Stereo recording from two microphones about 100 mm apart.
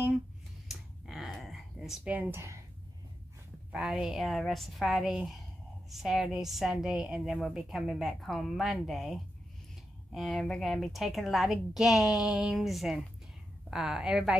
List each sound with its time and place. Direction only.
0.7 s a sound: centre (ahead or behind)
2.0 s speech: 15° right (ahead or behind)
3.7 s a woman's voice: 10° right (ahead or behind)
10.4 s a woman's voice: centre (ahead or behind)